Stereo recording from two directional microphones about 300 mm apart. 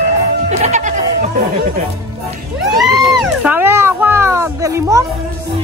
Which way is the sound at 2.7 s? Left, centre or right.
Centre.